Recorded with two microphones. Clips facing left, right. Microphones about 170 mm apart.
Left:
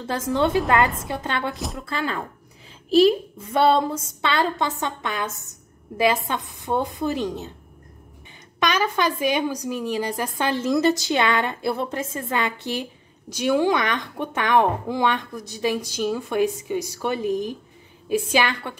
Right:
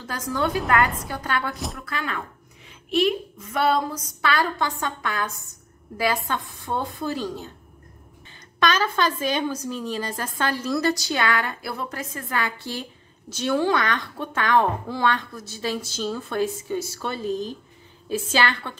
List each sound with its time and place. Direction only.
0.0 s a woman's voice: 25° left (ahead or behind)
8.5 s a woman's voice: 15° left (ahead or behind)